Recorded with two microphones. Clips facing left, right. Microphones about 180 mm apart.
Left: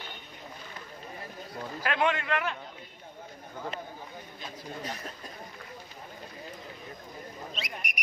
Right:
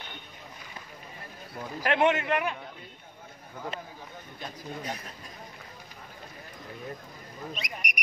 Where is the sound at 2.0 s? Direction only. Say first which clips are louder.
Right 3 dB; 20° right (ahead or behind).